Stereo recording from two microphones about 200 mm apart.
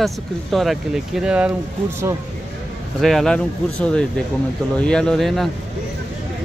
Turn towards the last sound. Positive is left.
turn(degrees=0)  # may be behind; listen again after turning